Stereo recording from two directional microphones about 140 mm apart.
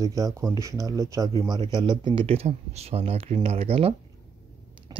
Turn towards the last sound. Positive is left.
turn(degrees=-45)  # may be behind; listen again after turning